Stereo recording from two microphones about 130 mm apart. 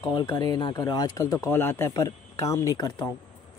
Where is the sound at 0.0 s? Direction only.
30° left (ahead or behind).